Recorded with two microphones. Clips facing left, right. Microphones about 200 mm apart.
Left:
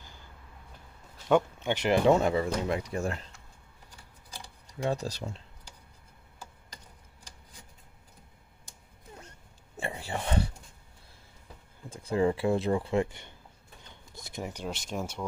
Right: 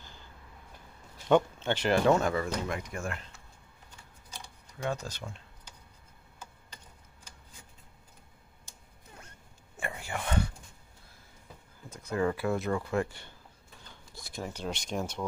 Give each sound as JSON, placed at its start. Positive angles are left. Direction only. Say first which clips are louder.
{"t": 1.3, "sound": "speech", "louder": "even", "side_deg": 15}
{"t": 4.8, "sound": "speech", "louder": "left 4 dB", "side_deg": 35}
{"t": 9.8, "sound": "a sound", "louder": "left 2 dB", "side_deg": 30}
{"t": 11.9, "sound": "speech", "louder": "left 3 dB", "side_deg": 30}